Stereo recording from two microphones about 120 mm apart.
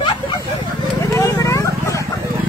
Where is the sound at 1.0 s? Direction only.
25° left (ahead or behind).